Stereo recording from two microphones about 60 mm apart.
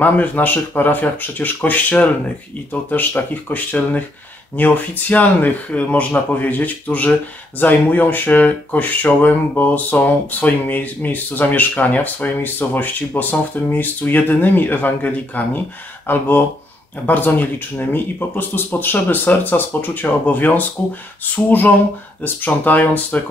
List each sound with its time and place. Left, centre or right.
0.0 s speech: left